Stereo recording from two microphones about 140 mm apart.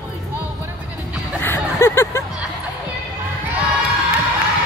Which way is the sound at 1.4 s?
15° left (ahead or behind).